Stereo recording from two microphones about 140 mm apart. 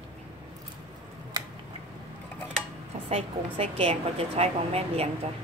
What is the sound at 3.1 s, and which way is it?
A woman's voice, 45° right (ahead or behind).